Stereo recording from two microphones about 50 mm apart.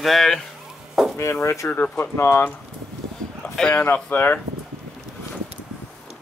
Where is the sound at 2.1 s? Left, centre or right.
Left.